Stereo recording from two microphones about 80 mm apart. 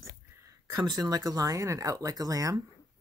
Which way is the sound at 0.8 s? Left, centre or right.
Right.